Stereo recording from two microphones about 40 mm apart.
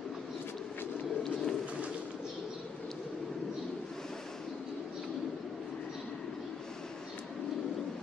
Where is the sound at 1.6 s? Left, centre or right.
Right.